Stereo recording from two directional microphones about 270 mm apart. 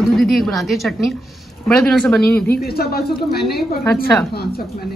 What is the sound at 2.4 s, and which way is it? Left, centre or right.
A woman's voice, left.